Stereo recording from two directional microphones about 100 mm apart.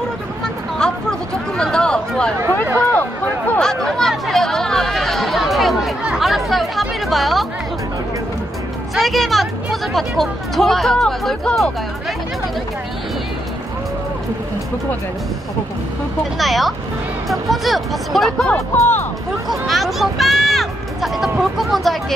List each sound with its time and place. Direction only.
1.6 s chatter: 10° left (ahead or behind)
2.5 s a sound: 20° left (ahead or behind)
3.5 s chatter: 5° left (ahead or behind)
8.9 s speech: centre (ahead or behind)
16.3 s speech: centre (ahead or behind)
18.8 s speech: 25° left (ahead or behind)
19.5 s speech: centre (ahead or behind)